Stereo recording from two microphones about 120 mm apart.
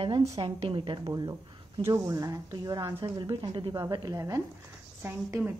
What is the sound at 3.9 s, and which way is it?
A woman's voice, 30° right (ahead or behind).